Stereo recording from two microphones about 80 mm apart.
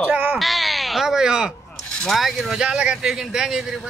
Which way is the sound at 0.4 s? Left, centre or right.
Centre.